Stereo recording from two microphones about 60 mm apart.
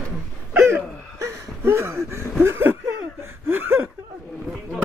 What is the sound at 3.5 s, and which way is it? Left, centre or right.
Speech, right.